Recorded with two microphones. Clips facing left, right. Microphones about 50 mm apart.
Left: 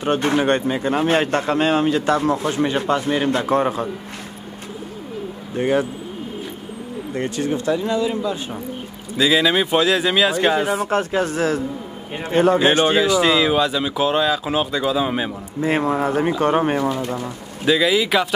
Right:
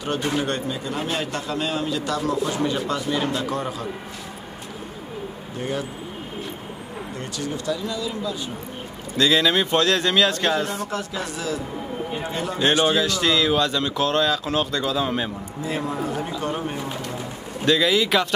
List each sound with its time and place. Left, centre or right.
0.4 s a man's voice: left
5.6 s a man's voice: left
7.2 s a man's voice: left
9.1 s speech: centre
10.9 s a man's voice: left
12.7 s speech: left
13.0 s speech: centre
15.6 s speech: left
17.6 s speech: centre